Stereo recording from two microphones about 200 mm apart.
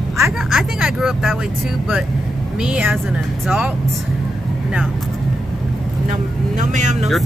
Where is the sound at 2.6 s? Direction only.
5° right (ahead or behind).